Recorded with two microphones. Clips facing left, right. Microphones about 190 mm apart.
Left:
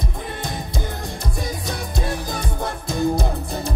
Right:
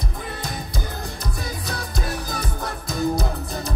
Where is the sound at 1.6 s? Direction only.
25° left (ahead or behind).